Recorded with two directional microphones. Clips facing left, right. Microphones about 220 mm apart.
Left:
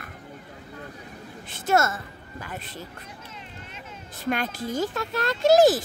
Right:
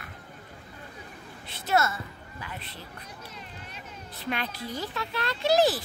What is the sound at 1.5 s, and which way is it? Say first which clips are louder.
Speech: left 3 dB; 45° left (ahead or behind).